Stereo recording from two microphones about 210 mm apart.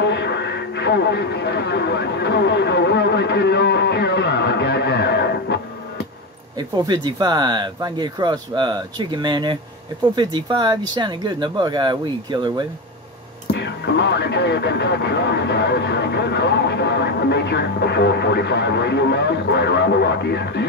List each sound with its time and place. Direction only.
0.0 s speech: 55° left (ahead or behind)
6.8 s speech: 20° right (ahead or behind)
13.5 s speech: 55° left (ahead or behind)